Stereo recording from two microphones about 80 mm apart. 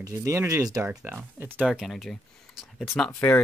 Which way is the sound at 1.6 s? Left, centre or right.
Centre.